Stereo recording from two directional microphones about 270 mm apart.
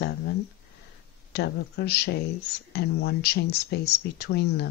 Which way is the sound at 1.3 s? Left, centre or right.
Left.